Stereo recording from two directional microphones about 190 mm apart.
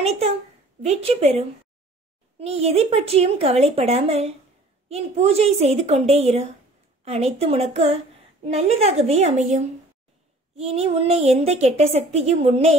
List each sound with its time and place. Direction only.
0.8 s a woman's voice: 35° right (ahead or behind)